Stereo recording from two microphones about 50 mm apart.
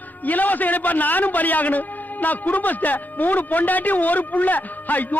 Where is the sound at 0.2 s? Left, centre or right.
Left.